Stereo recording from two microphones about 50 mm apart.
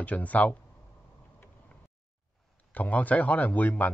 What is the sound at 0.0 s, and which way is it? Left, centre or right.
Speech, left.